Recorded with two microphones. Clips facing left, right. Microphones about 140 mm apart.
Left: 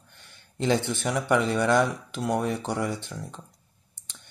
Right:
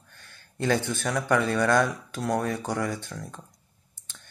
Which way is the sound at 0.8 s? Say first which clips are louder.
Left 1 dB; 20° left (ahead or behind).